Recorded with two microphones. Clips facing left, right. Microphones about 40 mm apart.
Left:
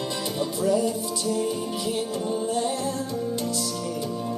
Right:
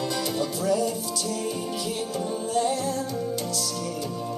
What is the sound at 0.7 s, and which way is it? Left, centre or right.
Music, left.